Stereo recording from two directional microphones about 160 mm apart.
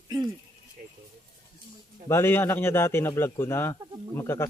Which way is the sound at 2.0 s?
15° left (ahead or behind).